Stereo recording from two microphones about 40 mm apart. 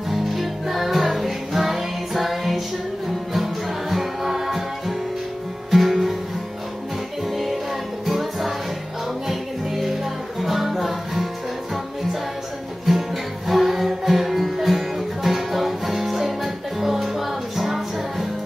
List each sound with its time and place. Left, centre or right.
0.1 s music: centre
7.2 s music: centre
12.8 s music: centre